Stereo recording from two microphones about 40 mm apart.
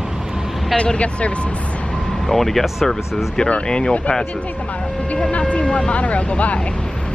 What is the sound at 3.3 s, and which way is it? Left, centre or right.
Speech, left.